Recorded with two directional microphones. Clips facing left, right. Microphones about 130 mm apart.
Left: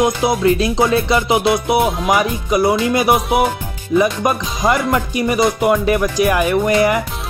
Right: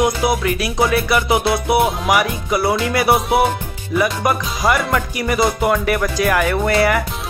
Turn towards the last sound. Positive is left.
turn(degrees=20)  # may be behind; listen again after turning